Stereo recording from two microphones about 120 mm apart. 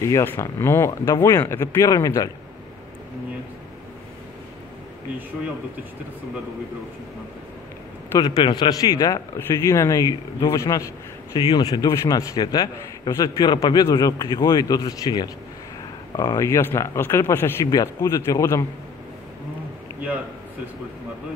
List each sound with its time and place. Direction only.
0.0 s speech: 20° left (ahead or behind)
8.2 s a man's voice: 35° left (ahead or behind); by 17.6 s 20° left (ahead or behind)
17.6 s speech: 30° left (ahead or behind)